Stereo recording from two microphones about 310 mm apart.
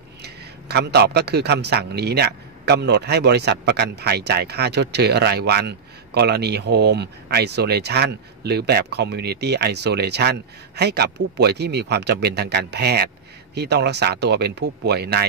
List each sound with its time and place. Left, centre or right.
0.2 s speech: right